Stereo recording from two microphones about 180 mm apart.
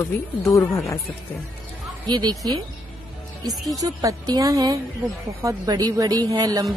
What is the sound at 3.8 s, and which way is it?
A woman's voice, 20° right (ahead or behind).